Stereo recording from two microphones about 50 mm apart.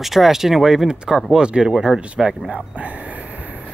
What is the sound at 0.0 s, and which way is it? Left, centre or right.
Speech, centre.